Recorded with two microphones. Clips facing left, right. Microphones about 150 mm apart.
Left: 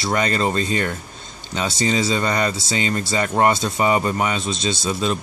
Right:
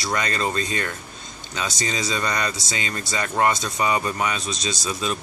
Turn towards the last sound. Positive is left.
turn(degrees=30)  # may be behind; listen again after turning